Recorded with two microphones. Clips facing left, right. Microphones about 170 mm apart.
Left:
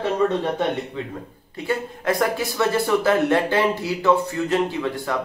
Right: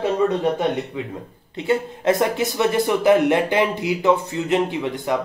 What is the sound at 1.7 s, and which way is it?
A man's voice, 25° right (ahead or behind).